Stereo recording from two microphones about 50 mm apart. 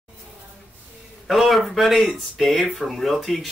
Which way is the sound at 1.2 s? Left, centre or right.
Centre.